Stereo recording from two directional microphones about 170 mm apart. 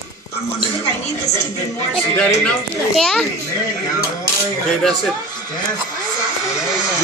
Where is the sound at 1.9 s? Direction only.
5° left (ahead or behind).